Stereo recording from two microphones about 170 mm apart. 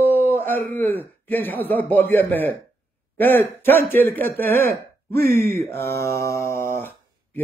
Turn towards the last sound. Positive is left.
turn(degrees=15)  # may be behind; listen again after turning